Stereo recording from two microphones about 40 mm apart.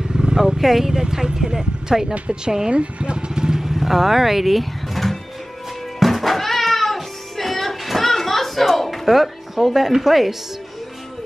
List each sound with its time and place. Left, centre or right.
0.1 s speech: centre
2.7 s motorcycle: right; by 5.2 s centre
5.9 s music: centre